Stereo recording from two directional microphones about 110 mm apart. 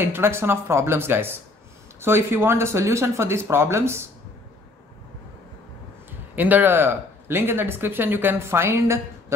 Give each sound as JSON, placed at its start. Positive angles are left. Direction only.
{"t": 0.0, "sound": "speech", "side_deg": -20}
{"t": 6.3, "sound": "speech", "side_deg": -15}